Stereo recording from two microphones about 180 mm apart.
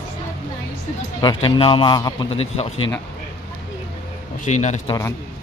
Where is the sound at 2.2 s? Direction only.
35° left (ahead or behind).